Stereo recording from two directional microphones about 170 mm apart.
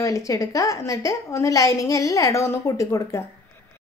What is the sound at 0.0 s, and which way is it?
A woman's voice, 20° left (ahead or behind).